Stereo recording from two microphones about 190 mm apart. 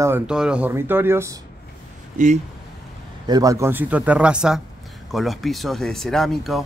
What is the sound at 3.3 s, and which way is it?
Speech, 20° right (ahead or behind).